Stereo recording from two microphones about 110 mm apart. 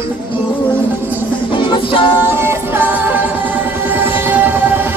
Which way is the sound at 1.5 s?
50° left (ahead or behind).